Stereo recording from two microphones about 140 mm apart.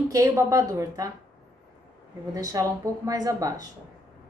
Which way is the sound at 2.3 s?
25° right (ahead or behind).